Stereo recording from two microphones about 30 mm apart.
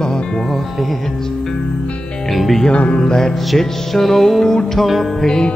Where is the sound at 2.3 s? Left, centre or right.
Centre.